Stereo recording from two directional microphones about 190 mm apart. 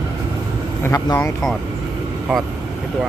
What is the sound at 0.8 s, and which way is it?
Vehicle, 15° left (ahead or behind).